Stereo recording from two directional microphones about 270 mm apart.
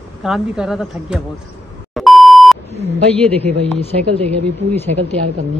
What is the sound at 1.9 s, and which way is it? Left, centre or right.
Beep, centre.